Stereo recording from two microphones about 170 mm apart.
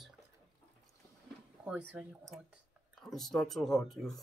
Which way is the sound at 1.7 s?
5° right (ahead or behind).